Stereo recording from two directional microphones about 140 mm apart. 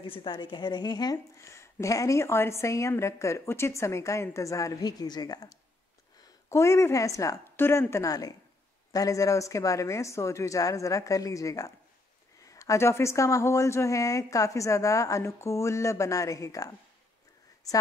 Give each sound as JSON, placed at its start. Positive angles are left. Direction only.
{"t": 0.0, "sound": "a woman's voice", "side_deg": 35}